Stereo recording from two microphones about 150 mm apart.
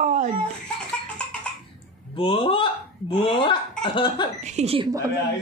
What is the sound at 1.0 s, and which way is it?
Music, 10° left (ahead or behind).